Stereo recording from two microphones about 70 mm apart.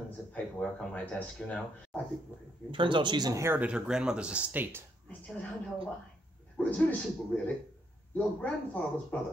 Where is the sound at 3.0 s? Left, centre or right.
Right.